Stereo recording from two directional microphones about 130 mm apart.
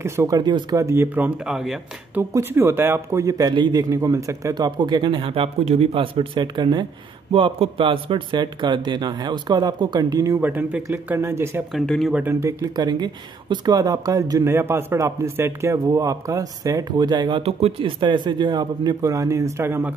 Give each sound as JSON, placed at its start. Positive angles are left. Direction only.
{"t": 0.0, "sound": "speech", "side_deg": -20}
{"t": 0.4, "sound": "a man's voice", "side_deg": -35}
{"t": 0.7, "sound": "speech", "side_deg": -20}
{"t": 1.5, "sound": "speech", "side_deg": -5}
{"t": 2.3, "sound": "speech", "side_deg": -15}
{"t": 3.5, "sound": "a man's voice", "side_deg": -35}
{"t": 3.9, "sound": "a man's voice", "side_deg": -25}
{"t": 10.4, "sound": "speech", "side_deg": -15}
{"t": 11.7, "sound": "speech", "side_deg": 5}
{"t": 12.1, "sound": "speech", "side_deg": -15}
{"t": 17.4, "sound": "a man's voice", "side_deg": -50}